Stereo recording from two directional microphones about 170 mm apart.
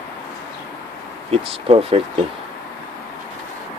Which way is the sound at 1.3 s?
35° right (ahead or behind).